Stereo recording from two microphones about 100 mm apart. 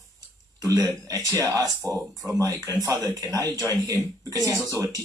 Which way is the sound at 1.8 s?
15° left (ahead or behind).